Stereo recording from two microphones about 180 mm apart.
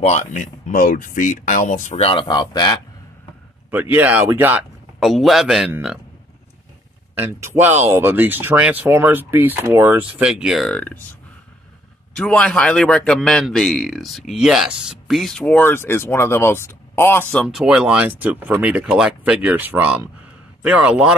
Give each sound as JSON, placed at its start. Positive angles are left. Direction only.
{"t": 0.0, "sound": "speech", "side_deg": 40}
{"t": 3.7, "sound": "speech", "side_deg": -10}
{"t": 5.0, "sound": "speech", "side_deg": 0}
{"t": 7.2, "sound": "speech", "side_deg": -15}
{"t": 12.2, "sound": "speech", "side_deg": 5}